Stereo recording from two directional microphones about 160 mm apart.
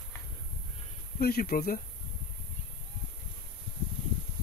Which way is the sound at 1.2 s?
70° left (ahead or behind).